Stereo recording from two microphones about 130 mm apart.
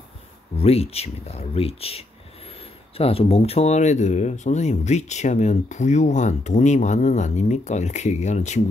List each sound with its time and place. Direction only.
0.6 s speech: 50° left (ahead or behind)